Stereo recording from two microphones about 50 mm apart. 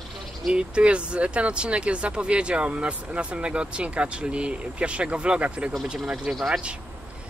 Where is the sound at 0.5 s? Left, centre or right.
Centre.